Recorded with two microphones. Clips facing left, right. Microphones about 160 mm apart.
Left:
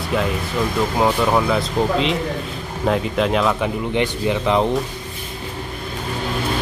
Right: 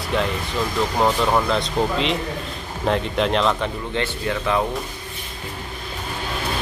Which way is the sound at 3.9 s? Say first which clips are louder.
Left 6 dB; 15° left (ahead or behind).